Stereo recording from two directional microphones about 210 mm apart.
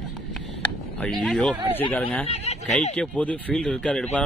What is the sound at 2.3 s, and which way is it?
Speech, 30° left (ahead or behind).